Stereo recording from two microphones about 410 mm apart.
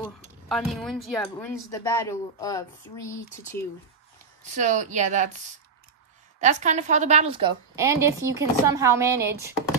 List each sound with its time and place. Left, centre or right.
0.0 s speech: centre
4.4 s a woman's voice: centre
6.4 s a woman's voice: centre